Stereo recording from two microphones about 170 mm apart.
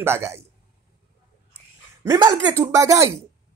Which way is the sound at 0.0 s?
15° right (ahead or behind).